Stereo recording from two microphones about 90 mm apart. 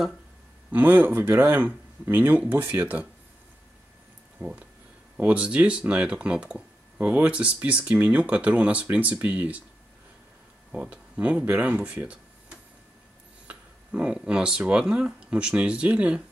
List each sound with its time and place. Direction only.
0.7 s speech: 20° right (ahead or behind)
4.4 s speech: 10° right (ahead or behind)
10.7 s speech: 15° right (ahead or behind)